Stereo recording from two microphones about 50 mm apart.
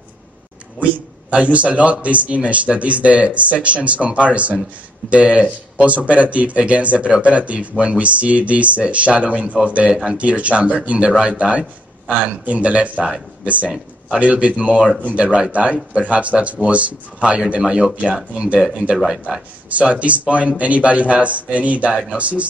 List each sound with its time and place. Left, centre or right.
0.7 s speech: right
14.1 s speech: right
19.0 s speech: centre
19.7 s speech: right